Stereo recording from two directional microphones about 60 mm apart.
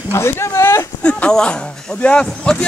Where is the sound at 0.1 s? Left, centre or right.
Left.